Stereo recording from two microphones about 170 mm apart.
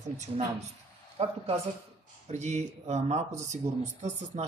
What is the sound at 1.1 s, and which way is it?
Speech, 35° right (ahead or behind).